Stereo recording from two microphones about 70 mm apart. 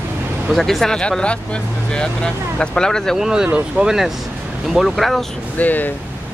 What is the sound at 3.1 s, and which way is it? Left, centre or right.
Speech, centre.